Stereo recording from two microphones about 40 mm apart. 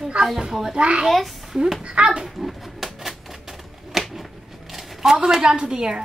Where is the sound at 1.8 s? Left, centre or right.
Right.